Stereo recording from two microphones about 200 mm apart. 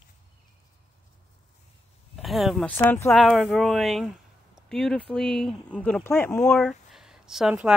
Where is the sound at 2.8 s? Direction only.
10° left (ahead or behind).